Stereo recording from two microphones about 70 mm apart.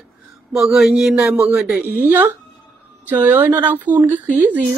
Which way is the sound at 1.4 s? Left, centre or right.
Centre.